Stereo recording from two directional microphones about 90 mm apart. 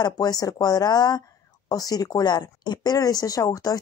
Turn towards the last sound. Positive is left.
turn(degrees=40)  # may be behind; listen again after turning